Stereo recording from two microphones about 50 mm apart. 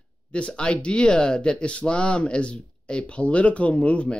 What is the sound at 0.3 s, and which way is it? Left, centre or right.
Speech, left.